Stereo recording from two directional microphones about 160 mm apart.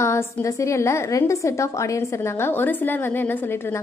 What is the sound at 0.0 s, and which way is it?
A woman's voice, 15° left (ahead or behind).